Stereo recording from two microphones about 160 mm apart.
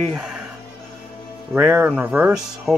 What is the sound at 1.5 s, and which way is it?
Speech, 10° right (ahead or behind).